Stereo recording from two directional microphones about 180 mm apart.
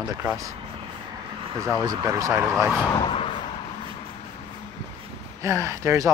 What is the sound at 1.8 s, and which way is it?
Speech, 20° right (ahead or behind).